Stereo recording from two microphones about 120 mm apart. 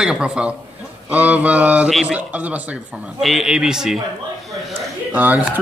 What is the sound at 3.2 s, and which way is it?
Speech, centre (ahead or behind).